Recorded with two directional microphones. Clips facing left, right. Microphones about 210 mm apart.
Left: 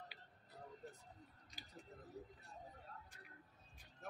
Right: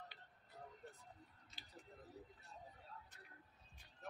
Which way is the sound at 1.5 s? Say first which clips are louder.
Left 5 dB; 15° left (ahead or behind).